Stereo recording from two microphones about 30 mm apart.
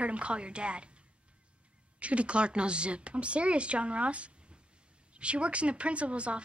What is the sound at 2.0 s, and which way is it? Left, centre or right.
Speech, right.